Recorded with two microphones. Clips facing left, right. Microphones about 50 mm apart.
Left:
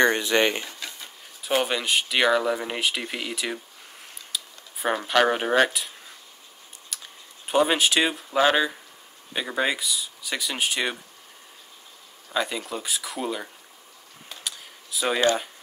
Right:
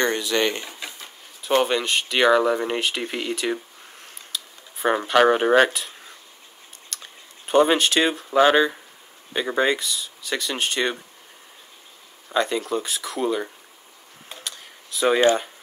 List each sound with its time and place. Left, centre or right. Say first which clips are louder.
0.0 s speech: left 2 dB; left
0.7 s a sound: right 1 dB; centre
1.4 s speech: right 4 dB; centre
6.9 s chewing: right 2 dB; centre
7.4 s speech: right 4 dB; centre
12.3 s speech: right 5 dB; centre
14.4 s a sound: left 1 dB; centre